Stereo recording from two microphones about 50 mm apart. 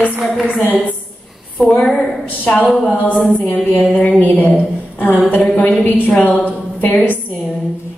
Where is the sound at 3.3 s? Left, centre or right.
Left.